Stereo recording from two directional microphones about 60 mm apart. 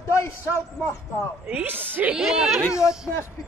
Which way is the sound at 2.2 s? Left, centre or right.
Centre.